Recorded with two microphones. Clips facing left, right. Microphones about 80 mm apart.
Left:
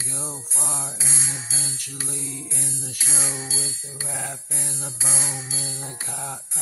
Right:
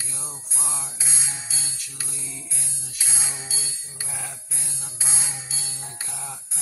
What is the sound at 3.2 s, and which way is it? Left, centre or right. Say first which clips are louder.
Music: left 5 dB; left.